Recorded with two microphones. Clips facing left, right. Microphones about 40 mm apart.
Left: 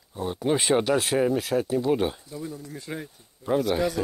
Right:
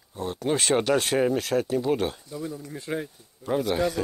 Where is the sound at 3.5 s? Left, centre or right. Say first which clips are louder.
Left 1 dB; centre.